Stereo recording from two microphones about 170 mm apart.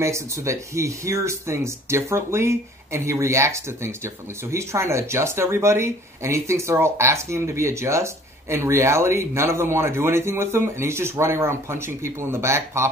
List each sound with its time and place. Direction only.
0.0 s speech: 15° right (ahead or behind)